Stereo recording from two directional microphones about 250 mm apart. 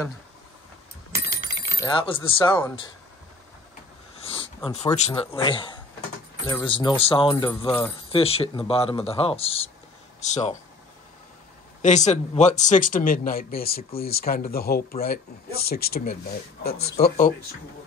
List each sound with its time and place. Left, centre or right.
1.8 s speech: centre
4.6 s speech: left
11.8 s speech: left
16.7 s speech: left